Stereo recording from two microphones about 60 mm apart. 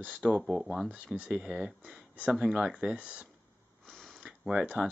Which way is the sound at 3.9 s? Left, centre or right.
Centre.